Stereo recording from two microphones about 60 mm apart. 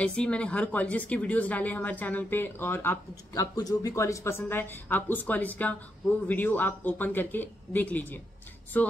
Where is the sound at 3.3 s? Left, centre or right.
Left.